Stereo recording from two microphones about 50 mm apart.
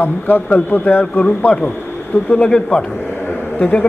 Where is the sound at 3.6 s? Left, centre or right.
Left.